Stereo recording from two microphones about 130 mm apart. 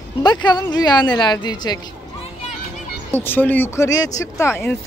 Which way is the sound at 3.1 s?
15° left (ahead or behind).